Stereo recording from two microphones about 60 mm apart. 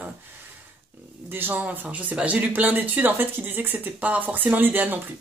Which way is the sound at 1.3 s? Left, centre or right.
Right.